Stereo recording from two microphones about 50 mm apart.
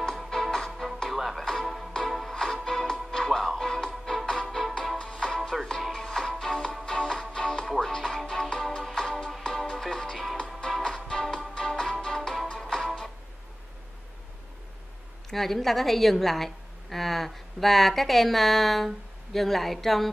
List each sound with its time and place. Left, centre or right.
0.3 s music: centre
0.7 s music: centre
4.9 s music: centre
5.5 s music: centre
7.6 s music: centre
8.3 s music: centre
15.2 s a woman's voice: centre